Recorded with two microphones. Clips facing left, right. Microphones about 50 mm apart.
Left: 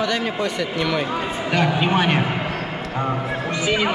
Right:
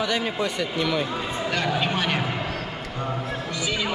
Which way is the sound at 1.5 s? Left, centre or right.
Centre.